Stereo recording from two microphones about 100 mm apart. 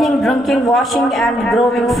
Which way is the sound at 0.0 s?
Centre (ahead or behind).